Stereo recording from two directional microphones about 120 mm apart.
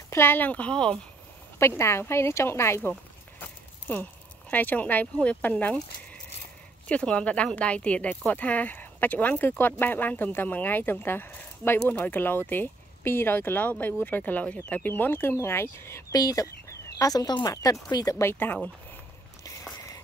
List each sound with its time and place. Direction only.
0.1 s speech: 20° left (ahead or behind)
1.6 s speech: 20° left (ahead or behind)
6.9 s speech: 10° left (ahead or behind)